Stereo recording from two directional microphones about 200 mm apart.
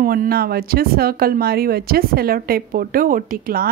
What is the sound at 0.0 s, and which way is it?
A woman's voice, 45° right (ahead or behind).